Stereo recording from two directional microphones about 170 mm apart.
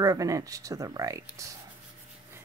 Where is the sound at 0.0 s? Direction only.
20° right (ahead or behind).